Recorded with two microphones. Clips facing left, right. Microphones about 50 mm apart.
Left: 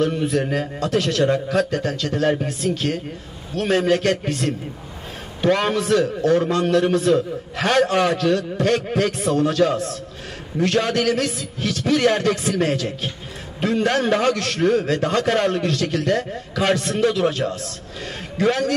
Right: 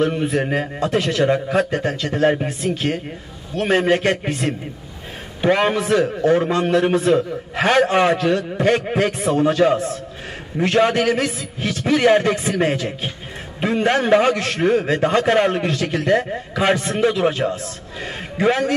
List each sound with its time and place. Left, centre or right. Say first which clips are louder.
0.0 s a man's voice: right 1 dB; right